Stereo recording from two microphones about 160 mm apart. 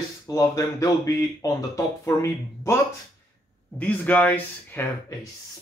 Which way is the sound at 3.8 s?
10° left (ahead or behind).